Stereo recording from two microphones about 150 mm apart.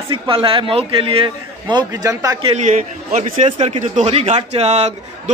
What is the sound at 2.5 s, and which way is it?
A man's voice, 55° right (ahead or behind).